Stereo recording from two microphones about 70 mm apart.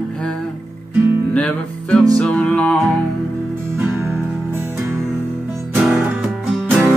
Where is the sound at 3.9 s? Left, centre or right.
Right.